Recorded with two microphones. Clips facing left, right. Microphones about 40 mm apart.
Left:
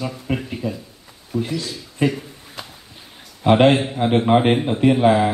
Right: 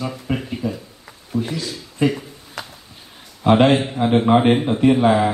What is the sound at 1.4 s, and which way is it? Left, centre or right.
Speech, right.